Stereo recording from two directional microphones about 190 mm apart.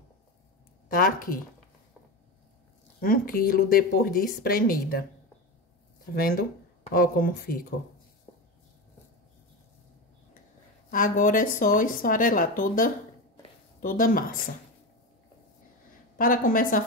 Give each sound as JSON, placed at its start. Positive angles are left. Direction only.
{"t": 0.8, "sound": "a woman's voice", "side_deg": 50}
{"t": 3.0, "sound": "a woman's voice", "side_deg": 50}
{"t": 6.1, "sound": "a woman's voice", "side_deg": 50}
{"t": 10.9, "sound": "a woman's voice", "side_deg": 45}
{"t": 16.2, "sound": "a woman's voice", "side_deg": 45}